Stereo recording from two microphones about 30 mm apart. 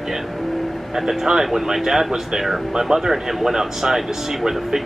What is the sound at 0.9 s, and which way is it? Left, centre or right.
Speech, centre.